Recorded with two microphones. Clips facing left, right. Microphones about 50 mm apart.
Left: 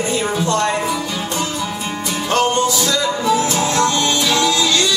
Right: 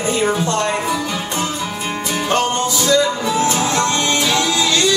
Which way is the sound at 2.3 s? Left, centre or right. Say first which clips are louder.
Left 3 dB; right.